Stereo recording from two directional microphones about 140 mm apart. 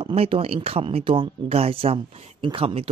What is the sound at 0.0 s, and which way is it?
Speech, 45° right (ahead or behind).